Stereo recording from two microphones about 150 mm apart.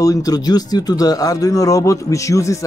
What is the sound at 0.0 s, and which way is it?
A man's voice, 25° left (ahead or behind).